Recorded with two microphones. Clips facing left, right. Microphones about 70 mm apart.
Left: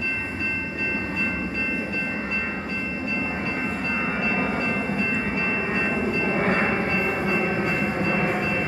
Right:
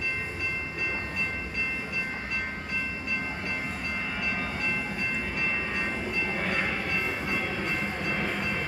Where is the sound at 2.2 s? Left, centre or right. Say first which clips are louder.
Left 5 dB; left.